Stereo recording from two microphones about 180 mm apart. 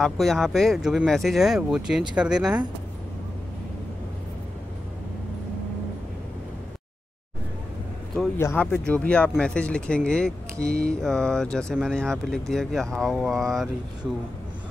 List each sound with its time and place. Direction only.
0.0 s speech: centre (ahead or behind)
8.4 s speech: 10° left (ahead or behind)
10.6 s speech: 55° right (ahead or behind)
10.9 s speech: 5° left (ahead or behind)